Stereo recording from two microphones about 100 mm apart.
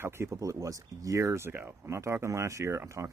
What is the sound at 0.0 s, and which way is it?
Speech, 25° right (ahead or behind).